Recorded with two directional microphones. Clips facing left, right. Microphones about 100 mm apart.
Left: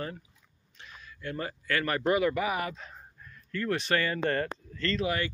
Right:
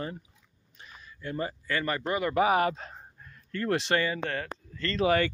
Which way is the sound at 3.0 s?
30° right (ahead or behind).